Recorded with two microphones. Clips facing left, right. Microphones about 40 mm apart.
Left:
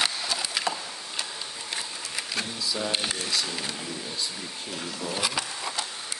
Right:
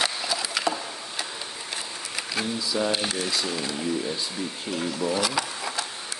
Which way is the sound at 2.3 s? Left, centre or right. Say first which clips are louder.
Right 4 dB; centre.